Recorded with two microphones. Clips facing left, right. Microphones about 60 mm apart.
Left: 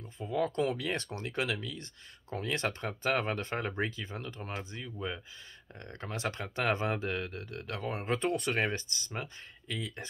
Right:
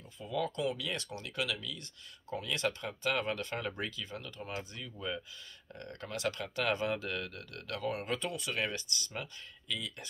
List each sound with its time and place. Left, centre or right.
0.2 s speech: left